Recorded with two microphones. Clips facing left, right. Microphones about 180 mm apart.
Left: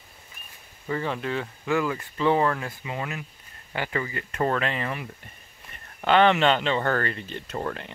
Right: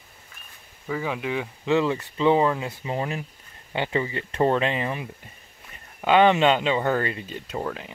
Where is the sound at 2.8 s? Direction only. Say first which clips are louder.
Right 4 dB; 30° right (ahead or behind).